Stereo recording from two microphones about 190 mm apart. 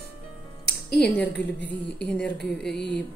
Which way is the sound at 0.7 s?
60° left (ahead or behind).